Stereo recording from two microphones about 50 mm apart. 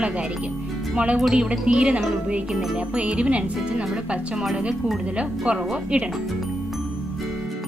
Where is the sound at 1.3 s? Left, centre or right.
Centre.